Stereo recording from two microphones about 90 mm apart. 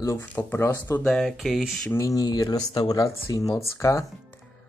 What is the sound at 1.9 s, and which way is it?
Speech, 35° left (ahead or behind).